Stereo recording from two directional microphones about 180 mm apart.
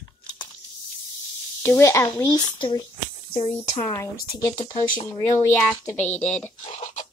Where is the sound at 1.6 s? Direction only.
15° left (ahead or behind).